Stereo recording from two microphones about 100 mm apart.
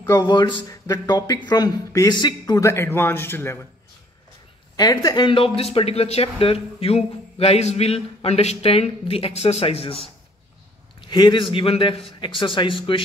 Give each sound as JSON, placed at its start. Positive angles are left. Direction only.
{"t": 0.0, "sound": "speech", "side_deg": 35}
{"t": 0.3, "sound": "speech", "side_deg": 50}
{"t": 0.7, "sound": "speech", "side_deg": 40}
{"t": 2.7, "sound": "a man's voice", "side_deg": 25}
{"t": 4.7, "sound": "speech", "side_deg": 40}
{"t": 5.2, "sound": "speech", "side_deg": 65}
{"t": 11.1, "sound": "a man's voice", "side_deg": 50}